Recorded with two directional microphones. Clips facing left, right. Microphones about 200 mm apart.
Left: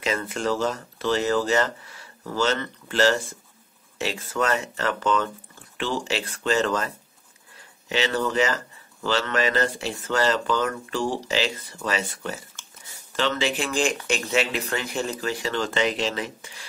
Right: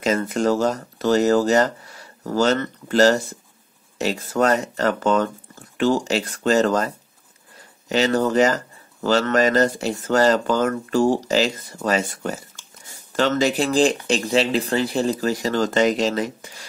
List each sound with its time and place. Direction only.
0.0 s speech: 45° right (ahead or behind)
7.9 s speech: 40° right (ahead or behind)